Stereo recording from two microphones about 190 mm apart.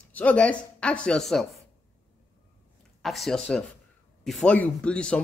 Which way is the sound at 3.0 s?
Centre (ahead or behind).